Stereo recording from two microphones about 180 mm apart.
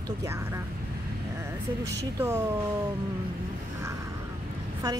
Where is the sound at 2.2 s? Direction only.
10° right (ahead or behind).